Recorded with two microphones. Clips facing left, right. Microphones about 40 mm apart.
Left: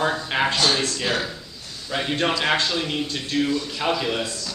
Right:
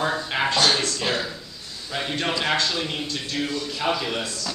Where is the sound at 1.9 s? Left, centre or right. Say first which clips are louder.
Left 3 dB; centre.